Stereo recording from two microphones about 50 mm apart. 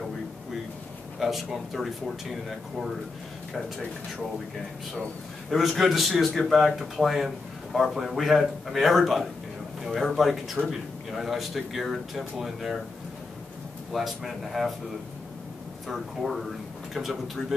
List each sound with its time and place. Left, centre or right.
1.2 s speech: centre
5.5 s speech: centre
13.9 s speech: centre
15.9 s speech: centre